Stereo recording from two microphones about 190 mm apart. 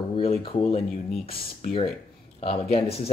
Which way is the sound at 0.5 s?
30° left (ahead or behind).